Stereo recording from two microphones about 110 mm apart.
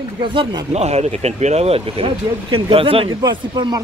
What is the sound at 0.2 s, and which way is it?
Speech, 50° right (ahead or behind).